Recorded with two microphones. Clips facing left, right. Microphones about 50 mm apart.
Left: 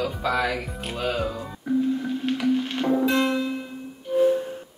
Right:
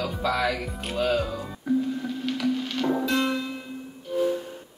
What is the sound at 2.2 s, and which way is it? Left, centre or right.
Music, left.